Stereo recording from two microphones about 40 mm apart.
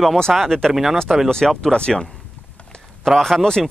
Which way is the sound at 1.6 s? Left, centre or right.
Left.